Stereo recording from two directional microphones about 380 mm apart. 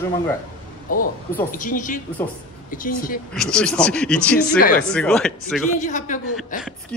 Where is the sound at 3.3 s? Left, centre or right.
Centre.